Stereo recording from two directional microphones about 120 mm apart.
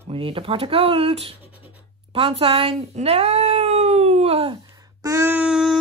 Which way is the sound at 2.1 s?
55° right (ahead or behind).